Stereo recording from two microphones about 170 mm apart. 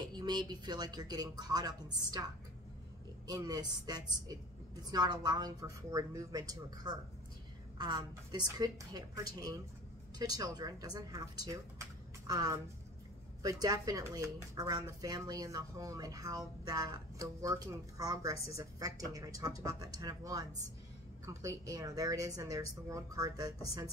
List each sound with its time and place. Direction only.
0.1 s speech: 25° right (ahead or behind)
3.3 s speech: 25° right (ahead or behind)